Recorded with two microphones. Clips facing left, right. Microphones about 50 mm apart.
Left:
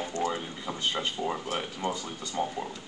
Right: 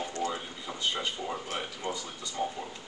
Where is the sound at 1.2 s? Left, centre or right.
Left.